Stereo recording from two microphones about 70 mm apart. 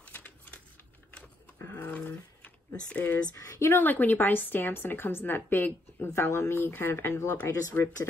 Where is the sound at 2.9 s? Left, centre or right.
Centre.